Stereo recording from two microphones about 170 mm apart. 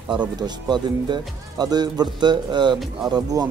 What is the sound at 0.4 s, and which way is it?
A man's voice, 25° right (ahead or behind).